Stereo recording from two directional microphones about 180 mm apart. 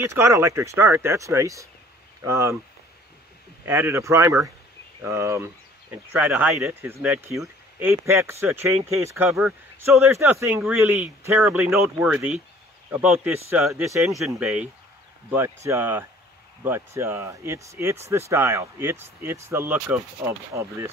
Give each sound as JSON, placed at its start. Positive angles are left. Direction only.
{"t": 0.0, "sound": "speech", "side_deg": -15}
{"t": 3.6, "sound": "speech", "side_deg": -15}